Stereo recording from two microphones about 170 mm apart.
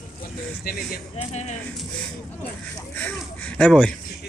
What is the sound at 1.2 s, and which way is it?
Speech, 40° left (ahead or behind).